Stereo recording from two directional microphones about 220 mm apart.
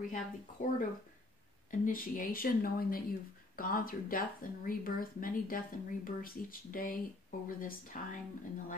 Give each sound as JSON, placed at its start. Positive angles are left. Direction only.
{"t": 0.0, "sound": "speech", "side_deg": 35}